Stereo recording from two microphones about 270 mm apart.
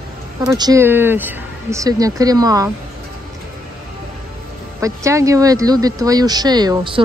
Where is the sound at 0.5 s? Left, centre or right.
Centre.